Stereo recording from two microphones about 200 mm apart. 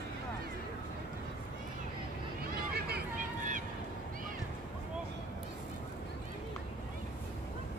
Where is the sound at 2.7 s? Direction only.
50° right (ahead or behind).